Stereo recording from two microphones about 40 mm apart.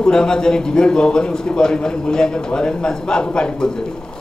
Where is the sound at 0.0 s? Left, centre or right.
Centre.